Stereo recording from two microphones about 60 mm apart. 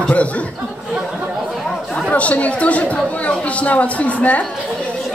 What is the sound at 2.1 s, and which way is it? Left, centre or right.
A woman's voice, left.